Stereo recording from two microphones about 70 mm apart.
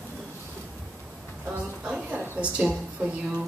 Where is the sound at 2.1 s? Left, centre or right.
Centre.